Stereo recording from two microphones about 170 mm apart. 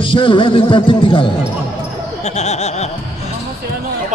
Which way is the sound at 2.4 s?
40° left (ahead or behind).